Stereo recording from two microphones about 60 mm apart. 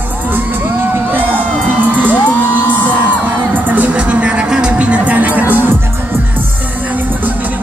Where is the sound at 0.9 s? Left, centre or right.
Right.